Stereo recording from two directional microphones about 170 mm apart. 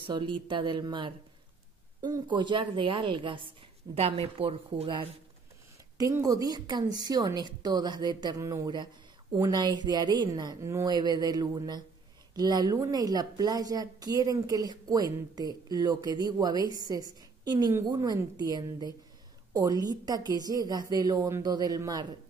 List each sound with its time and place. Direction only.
0.0 s a woman's voice: 30° right (ahead or behind)
5.9 s a woman's voice: 20° right (ahead or behind)